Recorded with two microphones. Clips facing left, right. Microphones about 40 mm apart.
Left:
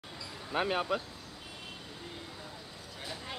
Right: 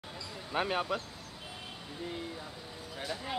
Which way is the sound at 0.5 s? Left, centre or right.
Centre.